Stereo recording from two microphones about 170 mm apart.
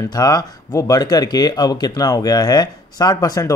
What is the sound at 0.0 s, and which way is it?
A man's voice, 20° left (ahead or behind).